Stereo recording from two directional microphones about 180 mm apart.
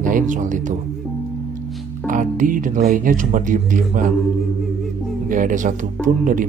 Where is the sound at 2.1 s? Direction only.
45° right (ahead or behind).